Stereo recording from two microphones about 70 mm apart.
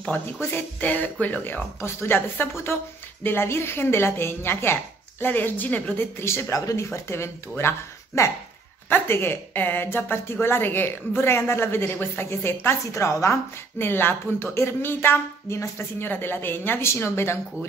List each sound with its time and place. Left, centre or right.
0.4 s speech: left
5.9 s speech: left
6.5 s speech: left
12.8 s speech: left
13.7 s speech: left